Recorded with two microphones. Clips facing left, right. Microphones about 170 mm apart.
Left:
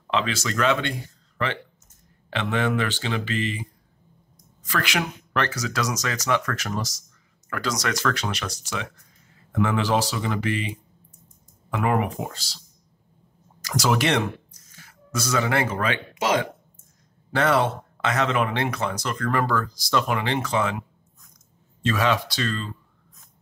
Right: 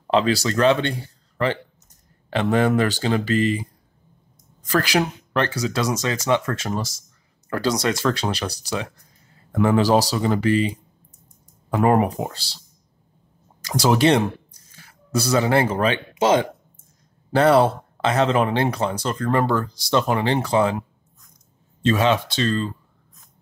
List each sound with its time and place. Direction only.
0.0 s speech: 35° right (ahead or behind)
4.6 s speech: 35° right (ahead or behind)
13.6 s speech: 30° right (ahead or behind)
21.8 s speech: 25° right (ahead or behind)